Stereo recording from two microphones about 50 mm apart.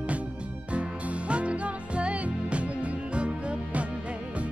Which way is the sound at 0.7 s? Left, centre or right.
Right.